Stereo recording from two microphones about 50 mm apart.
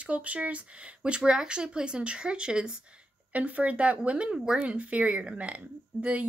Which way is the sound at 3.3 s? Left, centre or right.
Right.